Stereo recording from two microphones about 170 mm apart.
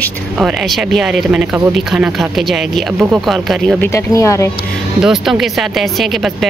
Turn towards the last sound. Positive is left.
turn(degrees=0)  # may be behind; listen again after turning